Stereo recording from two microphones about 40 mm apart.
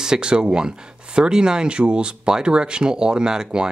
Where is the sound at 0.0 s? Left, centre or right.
Centre.